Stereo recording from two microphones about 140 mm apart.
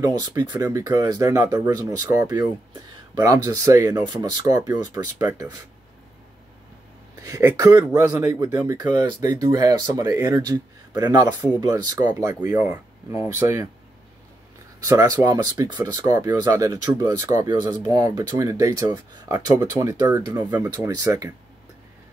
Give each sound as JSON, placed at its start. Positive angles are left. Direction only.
{"t": 0.0, "sound": "speech", "side_deg": -25}
{"t": 7.2, "sound": "speech", "side_deg": -25}
{"t": 12.5, "sound": "speech", "side_deg": -15}
{"t": 14.8, "sound": "speech", "side_deg": -25}